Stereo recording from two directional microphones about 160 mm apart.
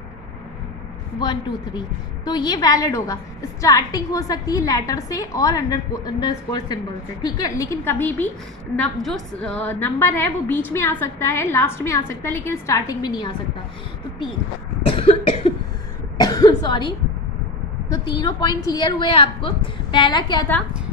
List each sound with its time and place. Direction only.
1.2 s a woman's voice: 30° left (ahead or behind)
14.9 s cough: 35° left (ahead or behind)
16.2 s cough: 25° left (ahead or behind)
17.8 s a woman's voice: 25° left (ahead or behind)